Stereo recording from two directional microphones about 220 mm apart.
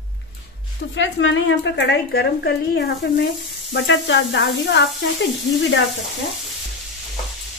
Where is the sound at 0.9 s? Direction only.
60° left (ahead or behind).